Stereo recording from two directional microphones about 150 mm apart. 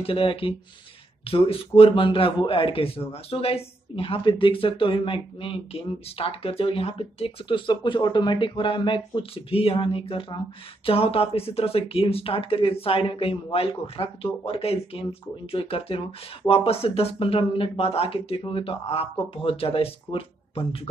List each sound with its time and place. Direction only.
0.0 s a man's voice: 35° left (ahead or behind)